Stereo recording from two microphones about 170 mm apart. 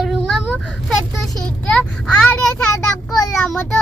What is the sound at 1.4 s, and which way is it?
Child singing, 5° left (ahead or behind).